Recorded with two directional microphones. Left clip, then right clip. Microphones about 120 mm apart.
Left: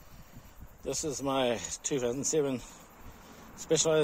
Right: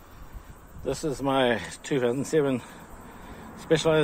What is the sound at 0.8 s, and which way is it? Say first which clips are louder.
Speech: right 5 dB; 35° left (ahead or behind).